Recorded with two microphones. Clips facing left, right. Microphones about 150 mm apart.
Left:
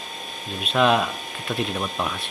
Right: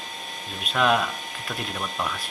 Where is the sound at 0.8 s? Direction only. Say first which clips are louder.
Left 3 dB; 5° left (ahead or behind).